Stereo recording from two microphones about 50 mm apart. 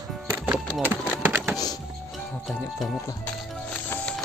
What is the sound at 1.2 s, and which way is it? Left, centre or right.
Typing, right.